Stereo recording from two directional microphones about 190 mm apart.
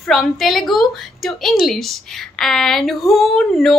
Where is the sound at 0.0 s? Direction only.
Centre (ahead or behind).